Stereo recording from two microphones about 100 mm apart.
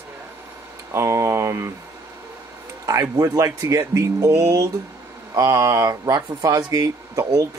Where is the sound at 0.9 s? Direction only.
30° right (ahead or behind).